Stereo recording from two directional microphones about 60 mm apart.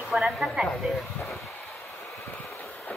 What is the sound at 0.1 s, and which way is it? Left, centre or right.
Speech, centre.